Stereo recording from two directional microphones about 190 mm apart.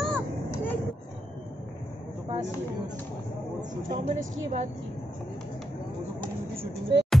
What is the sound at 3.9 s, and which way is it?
Speech, 40° right (ahead or behind).